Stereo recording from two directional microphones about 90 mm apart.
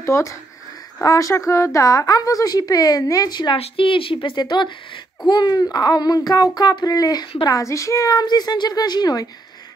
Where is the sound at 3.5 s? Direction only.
85° left; by 5.0 s 65° left (ahead or behind).